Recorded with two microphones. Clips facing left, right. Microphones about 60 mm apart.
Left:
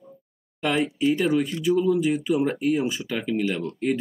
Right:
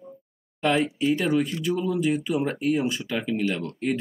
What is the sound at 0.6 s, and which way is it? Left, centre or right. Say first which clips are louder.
Speech: right 1 dB; centre.